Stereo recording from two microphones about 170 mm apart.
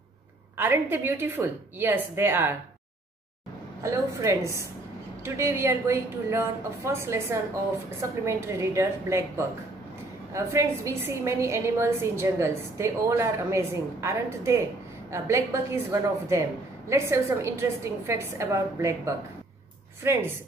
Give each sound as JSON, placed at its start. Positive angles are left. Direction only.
{"t": 0.6, "sound": "a woman's voice", "side_deg": -10}
{"t": 3.8, "sound": "a woman's voice", "side_deg": -15}